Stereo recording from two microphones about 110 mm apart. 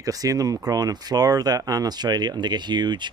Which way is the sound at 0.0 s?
35° right (ahead or behind).